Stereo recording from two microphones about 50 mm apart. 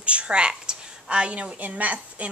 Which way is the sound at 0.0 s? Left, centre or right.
Right.